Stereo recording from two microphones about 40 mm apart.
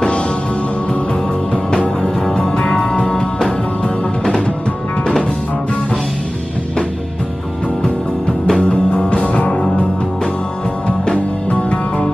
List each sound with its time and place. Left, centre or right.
1.5 s music: left
7.8 s music: left
11.5 s music: left